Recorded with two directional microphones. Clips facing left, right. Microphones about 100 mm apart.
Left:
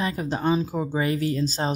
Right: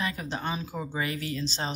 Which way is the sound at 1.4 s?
45° left (ahead or behind).